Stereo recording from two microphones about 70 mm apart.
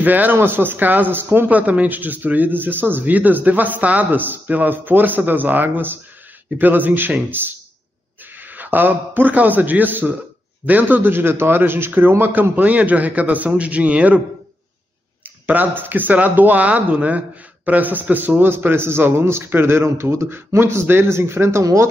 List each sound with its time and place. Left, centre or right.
0.0 s a man's voice: right
15.2 s a man's voice: right